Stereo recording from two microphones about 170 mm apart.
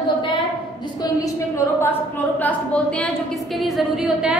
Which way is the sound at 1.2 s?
20° left (ahead or behind).